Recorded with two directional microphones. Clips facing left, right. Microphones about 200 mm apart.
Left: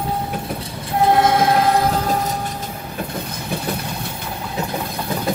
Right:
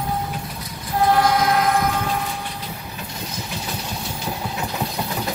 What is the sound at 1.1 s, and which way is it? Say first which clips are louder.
Choir: left 3 dB; 25° left (ahead or behind).